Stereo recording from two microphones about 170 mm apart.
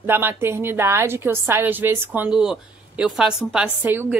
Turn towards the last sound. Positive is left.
turn(degrees=-10)  # may be behind; listen again after turning